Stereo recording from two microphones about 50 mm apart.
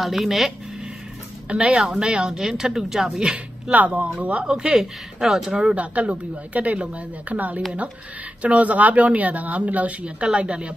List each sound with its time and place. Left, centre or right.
0.0 s a woman's voice: centre
1.5 s a woman's voice: centre
3.2 s speech: centre
3.7 s a woman's voice: right
4.6 s speech: centre
5.8 s a woman's voice: right
10.0 s speech: centre